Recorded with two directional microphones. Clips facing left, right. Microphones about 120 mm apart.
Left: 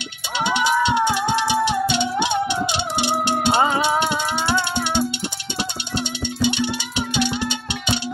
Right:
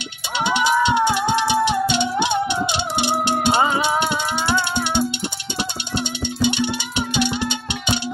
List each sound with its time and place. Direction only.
0.4 s music: 20° right (ahead or behind)
6.4 s music: 20° right (ahead or behind)